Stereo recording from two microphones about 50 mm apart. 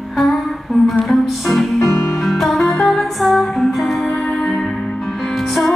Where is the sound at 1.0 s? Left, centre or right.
Centre.